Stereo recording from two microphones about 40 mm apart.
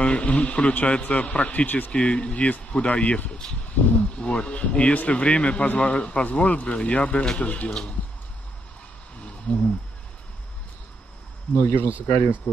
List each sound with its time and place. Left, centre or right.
0.0 s a man's voice: left
1.9 s a man's voice: left
9.5 s a man's voice: left
11.5 s speech: left